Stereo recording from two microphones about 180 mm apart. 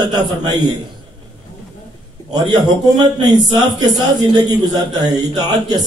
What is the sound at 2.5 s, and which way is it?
A man's voice, 20° right (ahead or behind).